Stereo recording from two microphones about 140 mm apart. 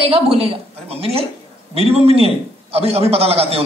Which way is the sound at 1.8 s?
45° right (ahead or behind).